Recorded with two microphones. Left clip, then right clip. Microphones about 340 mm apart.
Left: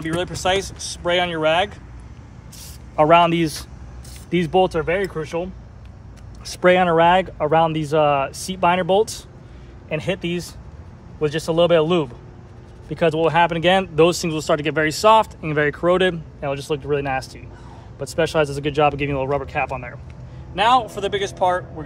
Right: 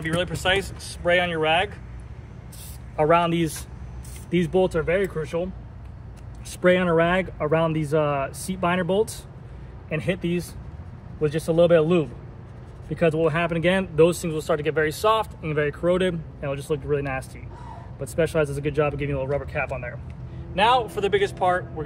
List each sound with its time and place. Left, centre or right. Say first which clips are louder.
0.0 s speech: left 2 dB; centre
3.0 s speech: left 6 dB; left
4.9 s speech: left 1 dB; centre
6.4 s speech: left 5 dB; centre
9.9 s speech: left 2 dB; centre
11.5 s speech: left 2 dB; centre
13.2 s speech: left 6 dB; centre
18.0 s speech: left 4 dB; centre
18.8 s speech: left 6 dB; centre